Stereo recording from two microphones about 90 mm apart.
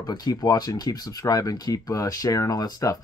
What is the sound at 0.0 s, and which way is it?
Speech, 45° left (ahead or behind).